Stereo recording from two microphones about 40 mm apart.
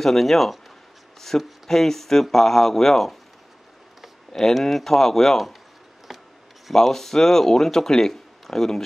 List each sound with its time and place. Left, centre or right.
0.0 s speech: centre
1.3 s speech: centre
4.4 s speech: centre
6.1 s a sound: centre
6.7 s speech: centre